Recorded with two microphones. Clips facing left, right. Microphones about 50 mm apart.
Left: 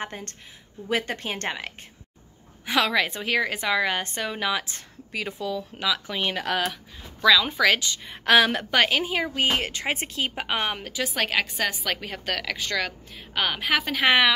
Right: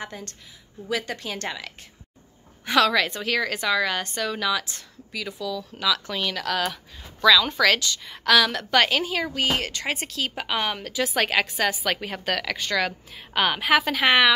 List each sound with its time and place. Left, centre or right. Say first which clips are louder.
0.0 s speech: left 2 dB; left
2.6 s a woman's voice: right 3 dB; centre; by 5.9 s left
5.9 s a woman's voice: right 1 dB; centre
7.9 s a woman's voice: left 1 dB; left
8.6 s a woman's voice: right 1 dB; centre
10.9 s a woman's voice: right 3 dB; centre